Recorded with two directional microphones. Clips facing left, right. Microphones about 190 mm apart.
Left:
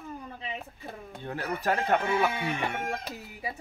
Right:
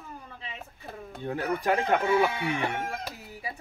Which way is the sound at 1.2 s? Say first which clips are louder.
Right 3 dB; 15° right (ahead or behind).